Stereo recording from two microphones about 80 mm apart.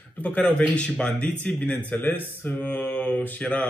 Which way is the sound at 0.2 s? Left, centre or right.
Centre.